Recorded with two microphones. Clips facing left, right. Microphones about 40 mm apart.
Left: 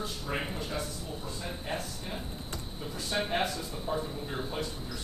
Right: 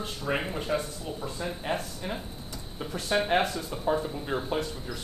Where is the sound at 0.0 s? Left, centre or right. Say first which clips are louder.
Right 5 dB; right.